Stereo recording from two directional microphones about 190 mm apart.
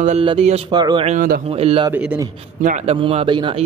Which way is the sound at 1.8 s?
10° right (ahead or behind).